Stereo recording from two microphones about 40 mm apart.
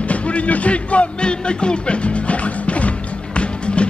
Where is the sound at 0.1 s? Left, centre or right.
Left.